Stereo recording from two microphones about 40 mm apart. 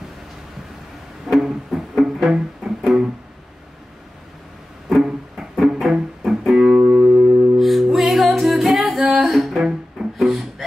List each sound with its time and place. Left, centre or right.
1.2 s music: centre
5.0 s music: centre
6.9 s music: right
7.5 s music: centre